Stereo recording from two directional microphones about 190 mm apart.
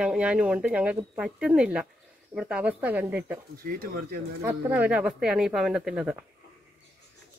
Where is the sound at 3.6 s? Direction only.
50° right (ahead or behind).